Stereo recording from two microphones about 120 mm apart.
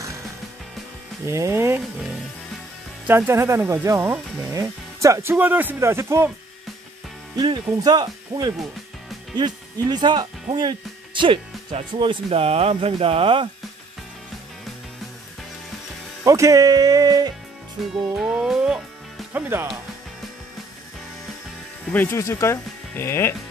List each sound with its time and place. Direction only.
1.2 s speech: 25° right (ahead or behind)
3.1 s speech: 20° right (ahead or behind)
7.3 s speech: 35° right (ahead or behind)
16.3 s speech: 30° right (ahead or behind)
17.9 s music: 5° right (ahead or behind)
19.3 s speech: 15° right (ahead or behind)
21.9 s speech: 20° left (ahead or behind)